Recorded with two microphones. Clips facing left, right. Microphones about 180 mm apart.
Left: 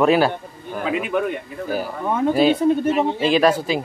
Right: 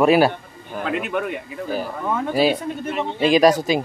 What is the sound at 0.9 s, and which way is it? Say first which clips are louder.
Speech: left 2 dB; centre (ahead or behind).